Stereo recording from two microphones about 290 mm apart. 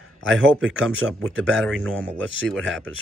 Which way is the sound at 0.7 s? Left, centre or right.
Centre.